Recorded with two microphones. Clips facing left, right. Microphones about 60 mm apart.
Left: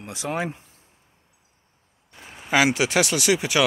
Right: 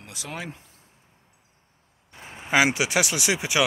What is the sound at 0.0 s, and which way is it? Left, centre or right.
Speech, left.